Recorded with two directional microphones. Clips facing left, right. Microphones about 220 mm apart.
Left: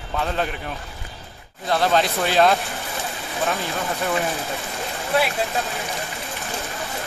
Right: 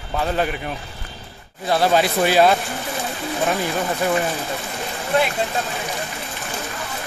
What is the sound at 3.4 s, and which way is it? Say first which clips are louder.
Speech: right 3 dB; 15° right (ahead or behind).